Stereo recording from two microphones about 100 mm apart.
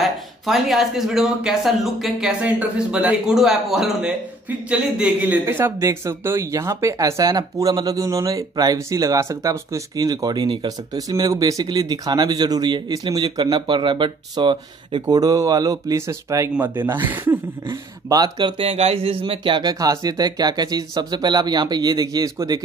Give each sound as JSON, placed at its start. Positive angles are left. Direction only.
{"t": 0.0, "sound": "speech", "side_deg": 0}
{"t": 5.2, "sound": "speech", "side_deg": -20}
{"t": 11.0, "sound": "speech", "side_deg": -35}
{"t": 16.5, "sound": "speech", "side_deg": -20}
{"t": 18.0, "sound": "speech", "side_deg": -40}
{"t": 18.6, "sound": "speech", "side_deg": -80}